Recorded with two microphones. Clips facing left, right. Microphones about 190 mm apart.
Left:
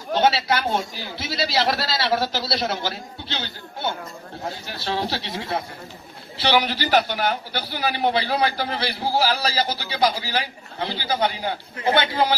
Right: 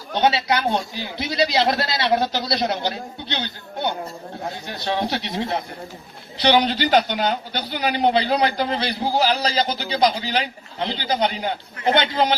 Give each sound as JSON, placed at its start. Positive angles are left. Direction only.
{"t": 0.2, "sound": "a man's voice", "side_deg": -20}
{"t": 4.6, "sound": "a man's voice", "side_deg": -15}